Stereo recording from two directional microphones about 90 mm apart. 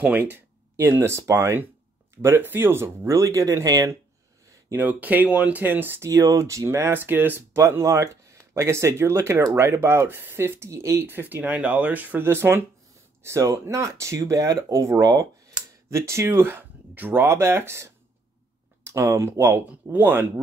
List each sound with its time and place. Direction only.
0.0 s speech: 15° right (ahead or behind); by 3.9 s 35° right (ahead or behind)
4.7 s speech: 20° right (ahead or behind)
6.0 s speech: 35° right (ahead or behind)